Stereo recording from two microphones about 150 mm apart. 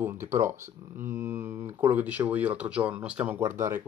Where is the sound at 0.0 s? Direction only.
15° right (ahead or behind).